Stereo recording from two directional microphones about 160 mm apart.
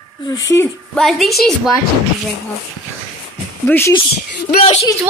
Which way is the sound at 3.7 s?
15° left (ahead or behind).